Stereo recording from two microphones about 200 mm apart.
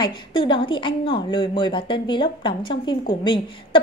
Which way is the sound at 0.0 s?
25° left (ahead or behind).